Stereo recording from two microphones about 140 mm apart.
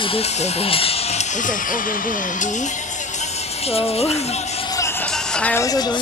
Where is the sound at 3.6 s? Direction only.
45° left (ahead or behind).